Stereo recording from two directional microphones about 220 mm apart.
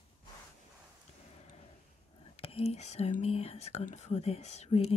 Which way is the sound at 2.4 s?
25° left (ahead or behind).